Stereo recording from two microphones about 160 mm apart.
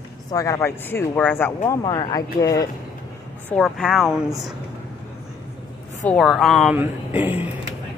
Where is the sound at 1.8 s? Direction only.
30° left (ahead or behind).